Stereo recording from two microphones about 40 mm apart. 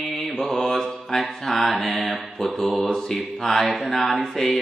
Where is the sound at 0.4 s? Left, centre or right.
Centre.